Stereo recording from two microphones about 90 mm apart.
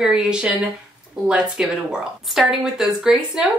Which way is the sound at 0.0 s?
5° right (ahead or behind).